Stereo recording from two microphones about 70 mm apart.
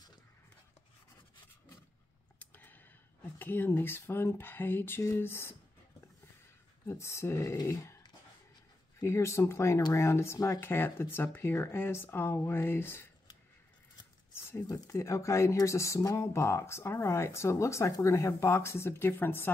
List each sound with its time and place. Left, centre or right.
2.3 s a sound: left
3.3 s speech: left
6.9 s speech: left
9.0 s speech: left
10.7 s speech: left
14.7 s speech: left